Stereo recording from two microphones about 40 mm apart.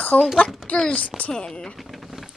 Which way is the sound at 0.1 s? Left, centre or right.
Centre.